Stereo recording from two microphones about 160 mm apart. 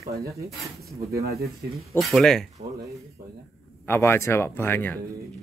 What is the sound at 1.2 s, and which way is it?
Speech, 75° right (ahead or behind).